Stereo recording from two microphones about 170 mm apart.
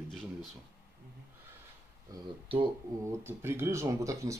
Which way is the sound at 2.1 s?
30° right (ahead or behind).